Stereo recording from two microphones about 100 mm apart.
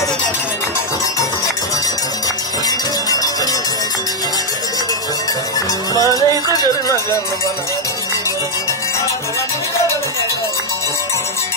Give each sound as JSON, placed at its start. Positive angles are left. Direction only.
{"t": 5.9, "sound": "music", "side_deg": 40}